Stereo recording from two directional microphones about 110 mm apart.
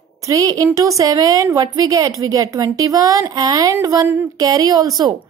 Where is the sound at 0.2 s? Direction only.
35° right (ahead or behind).